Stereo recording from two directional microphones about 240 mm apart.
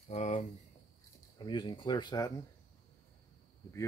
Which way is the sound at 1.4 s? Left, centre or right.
Centre.